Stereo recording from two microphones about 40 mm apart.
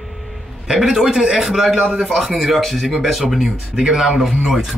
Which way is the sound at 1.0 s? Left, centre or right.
Centre.